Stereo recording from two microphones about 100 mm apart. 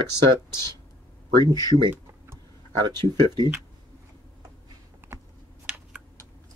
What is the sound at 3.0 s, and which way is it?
Speech, 50° right (ahead or behind).